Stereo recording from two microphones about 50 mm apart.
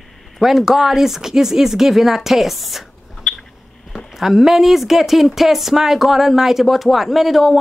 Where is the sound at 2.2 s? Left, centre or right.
Centre.